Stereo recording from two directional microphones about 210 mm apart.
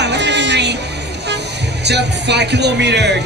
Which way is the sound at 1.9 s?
55° right (ahead or behind).